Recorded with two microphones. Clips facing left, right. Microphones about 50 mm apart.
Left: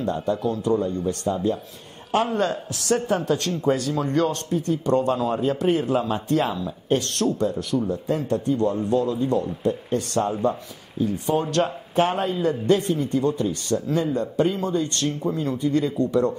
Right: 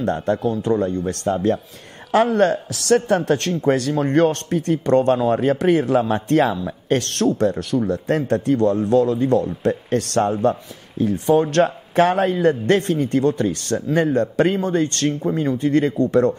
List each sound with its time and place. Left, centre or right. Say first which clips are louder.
0.0 s speech: right 4 dB; right
2.1 s speech: right 6 dB; right
2.4 s speech: right 7 dB; right
6.9 s speech: right 2 dB; right
7.2 s speech: right 7 dB; right
8.5 s speech: right 7 dB; right
11.0 s speech: right 6 dB; right
11.6 s speech: right 5 dB; right
14.6 s speech: right 4 dB; right